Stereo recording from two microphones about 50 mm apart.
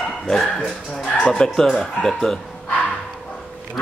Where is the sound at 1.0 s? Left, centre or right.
Left.